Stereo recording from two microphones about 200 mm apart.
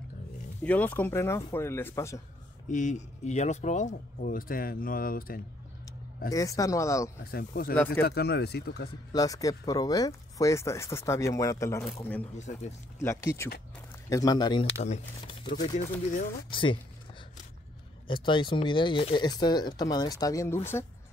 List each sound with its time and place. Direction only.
0.6 s speech: 10° left (ahead or behind)
2.7 s speech: 40° left (ahead or behind)
6.3 s speech: 15° left (ahead or behind)
7.2 s speech: 50° left (ahead or behind)
7.7 s speech: 10° left (ahead or behind)
8.0 s speech: 55° left (ahead or behind)
9.1 s speech: 15° left (ahead or behind)
12.4 s speech: 35° left (ahead or behind)
13.0 s speech: 15° left (ahead or behind)
18.0 s speech: 25° left (ahead or behind)